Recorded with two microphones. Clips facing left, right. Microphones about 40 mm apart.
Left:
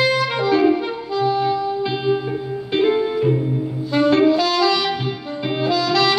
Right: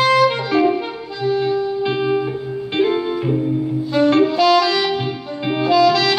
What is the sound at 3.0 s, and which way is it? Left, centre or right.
Music, centre.